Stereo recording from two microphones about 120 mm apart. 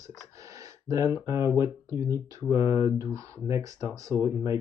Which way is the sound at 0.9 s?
30° right (ahead or behind).